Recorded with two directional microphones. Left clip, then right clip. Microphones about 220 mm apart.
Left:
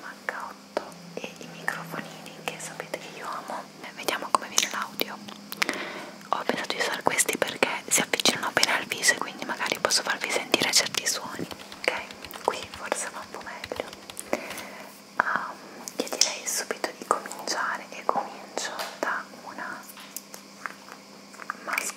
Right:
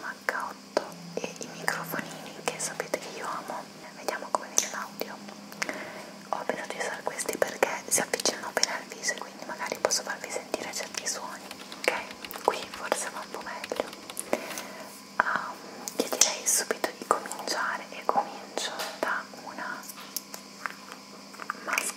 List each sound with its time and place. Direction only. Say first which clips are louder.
0.3 s whispering: right 2 dB; 10° right (ahead or behind)
4.1 s whispering: left 4 dB; 30° left (ahead or behind)
5.6 s a sound: left 6 dB; 45° left (ahead or behind)
6.3 s whispering: left 4 dB; 40° left (ahead or behind)
7.3 s whispering: left 1 dB; 20° left (ahead or behind)
11.8 s whispering: even; centre (ahead or behind)
14.3 s a sound: even; centre (ahead or behind)
15.1 s whispering: left 1 dB; centre (ahead or behind)
21.5 s a sound: even; centre (ahead or behind)